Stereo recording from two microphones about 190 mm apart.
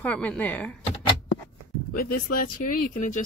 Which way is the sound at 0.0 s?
5° left (ahead or behind).